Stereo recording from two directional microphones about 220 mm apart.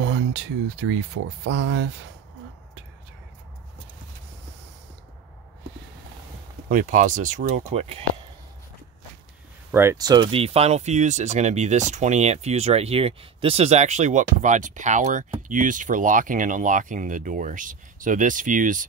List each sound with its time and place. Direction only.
0.0 s speech: 55° right (ahead or behind)
6.7 s speech: 35° right (ahead or behind)
9.7 s speech: 10° right (ahead or behind); by 18.9 s 35° right (ahead or behind)